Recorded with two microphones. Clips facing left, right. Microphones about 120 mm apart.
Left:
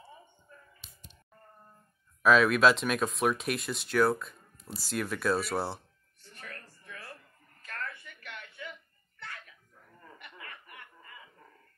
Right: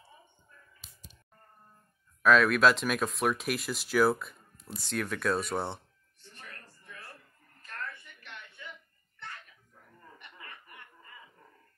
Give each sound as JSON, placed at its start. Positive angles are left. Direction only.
{"t": 0.8, "sound": "music", "side_deg": 0}
{"t": 2.2, "sound": "speech", "side_deg": 0}
{"t": 8.2, "sound": "a sound", "side_deg": 55}